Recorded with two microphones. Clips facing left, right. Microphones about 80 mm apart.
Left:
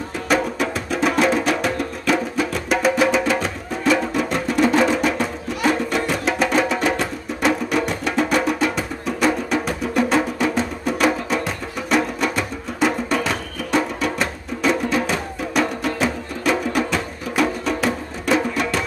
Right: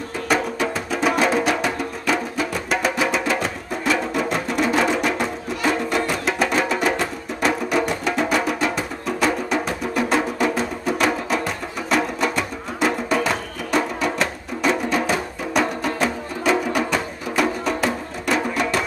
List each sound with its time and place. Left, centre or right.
0.3 s music: centre